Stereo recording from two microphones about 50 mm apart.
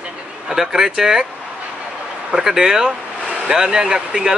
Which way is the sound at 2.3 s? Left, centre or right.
Centre.